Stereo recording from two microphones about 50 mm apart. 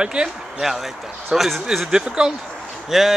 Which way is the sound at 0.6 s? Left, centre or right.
Centre.